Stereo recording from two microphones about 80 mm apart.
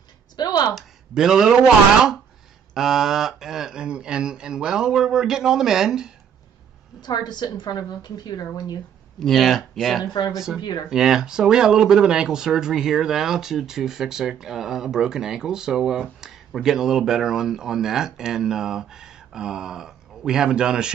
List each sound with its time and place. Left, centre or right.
0.4 s a woman's voice: left
0.7 s speech: centre
2.7 s speech: centre
7.0 s a woman's voice: left
9.2 s speech: centre
10.6 s a woman's voice: left
10.9 s speech: centre